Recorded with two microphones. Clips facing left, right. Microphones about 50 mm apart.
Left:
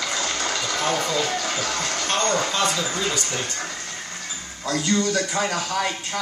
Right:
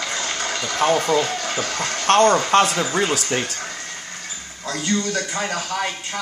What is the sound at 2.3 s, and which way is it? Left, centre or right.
Speech, right.